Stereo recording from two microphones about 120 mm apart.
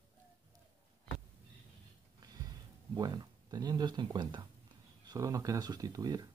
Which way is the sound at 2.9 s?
35° right (ahead or behind).